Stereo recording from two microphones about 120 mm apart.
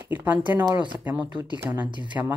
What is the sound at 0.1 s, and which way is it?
Speech, 15° right (ahead or behind).